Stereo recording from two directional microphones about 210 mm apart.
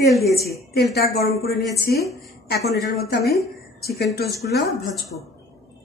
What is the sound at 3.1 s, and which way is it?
Speech, 50° left (ahead or behind).